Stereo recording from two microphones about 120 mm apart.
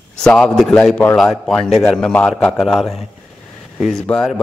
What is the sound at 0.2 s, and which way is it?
A woman's voice, 5° left (ahead or behind).